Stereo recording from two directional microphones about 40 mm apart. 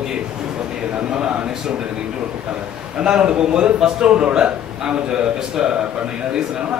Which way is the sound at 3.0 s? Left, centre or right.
Right.